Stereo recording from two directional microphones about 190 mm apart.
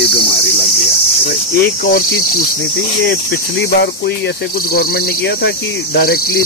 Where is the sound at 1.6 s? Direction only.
50° left (ahead or behind).